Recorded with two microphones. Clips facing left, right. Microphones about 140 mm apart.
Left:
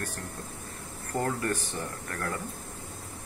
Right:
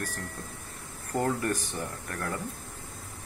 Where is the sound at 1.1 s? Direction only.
15° right (ahead or behind).